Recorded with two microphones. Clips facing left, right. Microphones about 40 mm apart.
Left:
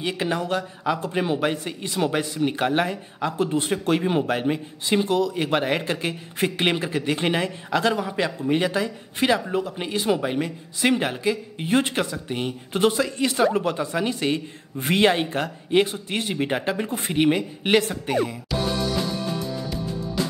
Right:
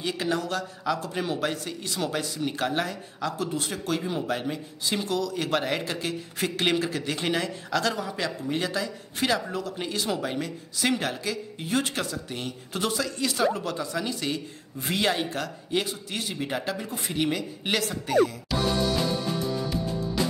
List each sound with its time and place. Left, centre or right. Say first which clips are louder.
0.0 s a man's voice: left 3 dB; left
19.5 s music: right 1 dB; centre